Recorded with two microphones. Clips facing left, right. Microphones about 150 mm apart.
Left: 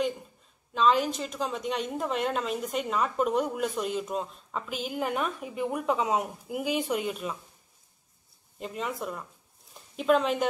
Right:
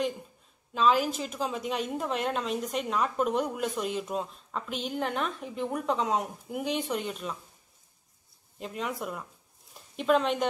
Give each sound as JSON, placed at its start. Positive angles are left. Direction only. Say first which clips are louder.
{"t": 0.7, "sound": "a woman's voice", "louder": "left 1 dB", "side_deg": -5}
{"t": 8.5, "sound": "a woman's voice", "louder": "left 1 dB", "side_deg": 0}